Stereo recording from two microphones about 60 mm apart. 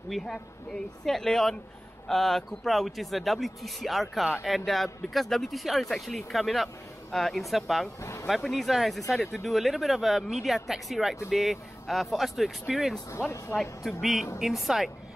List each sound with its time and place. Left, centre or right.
0.1 s speech: centre
8.0 s speech: left
8.4 s speech: centre
14.4 s speech: centre